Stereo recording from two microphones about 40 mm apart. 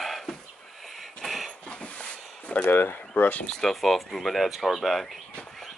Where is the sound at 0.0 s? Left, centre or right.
Centre.